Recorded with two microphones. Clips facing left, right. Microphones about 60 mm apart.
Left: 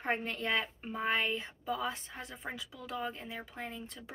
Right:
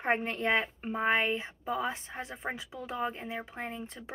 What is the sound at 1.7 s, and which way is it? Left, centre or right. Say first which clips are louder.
A woman's voice: right 5 dB; right.